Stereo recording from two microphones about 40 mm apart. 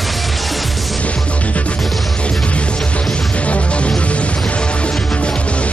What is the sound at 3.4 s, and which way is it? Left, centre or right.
Music, left.